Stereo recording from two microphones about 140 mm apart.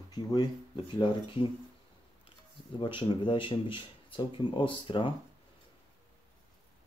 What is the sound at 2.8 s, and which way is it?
Speech, 35° left (ahead or behind).